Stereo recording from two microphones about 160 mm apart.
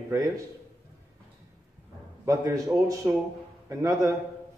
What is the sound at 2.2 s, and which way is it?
A man's voice, 20° right (ahead or behind).